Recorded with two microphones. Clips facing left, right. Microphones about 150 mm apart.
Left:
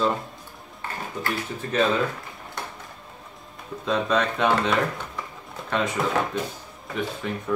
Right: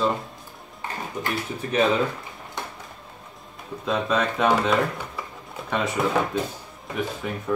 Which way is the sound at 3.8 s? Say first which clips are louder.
Even; centre (ahead or behind).